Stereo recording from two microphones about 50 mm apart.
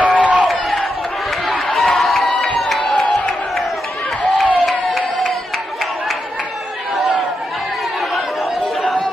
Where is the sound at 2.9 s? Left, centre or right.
Centre.